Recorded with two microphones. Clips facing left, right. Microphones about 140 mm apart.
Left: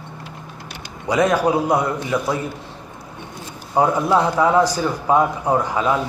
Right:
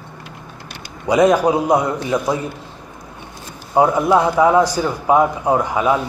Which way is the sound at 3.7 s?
10° right (ahead or behind).